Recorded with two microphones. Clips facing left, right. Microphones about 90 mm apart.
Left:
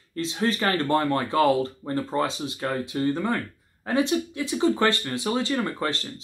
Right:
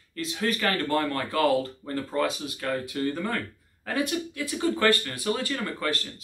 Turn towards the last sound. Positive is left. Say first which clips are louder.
# left 1 dB
turn(degrees=25)  # may be behind; listen again after turning